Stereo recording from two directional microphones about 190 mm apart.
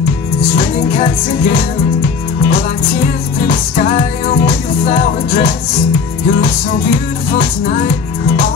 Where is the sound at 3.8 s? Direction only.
45° left (ahead or behind).